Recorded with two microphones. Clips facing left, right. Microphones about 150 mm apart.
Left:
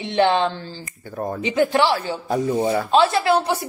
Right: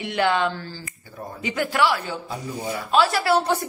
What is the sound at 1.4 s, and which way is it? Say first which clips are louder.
A woman's voice: left 4 dB; 25° left (ahead or behind).